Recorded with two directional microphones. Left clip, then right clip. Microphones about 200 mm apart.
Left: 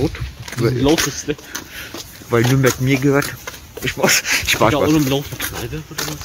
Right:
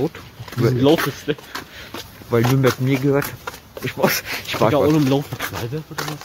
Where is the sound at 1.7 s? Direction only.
Centre (ahead or behind).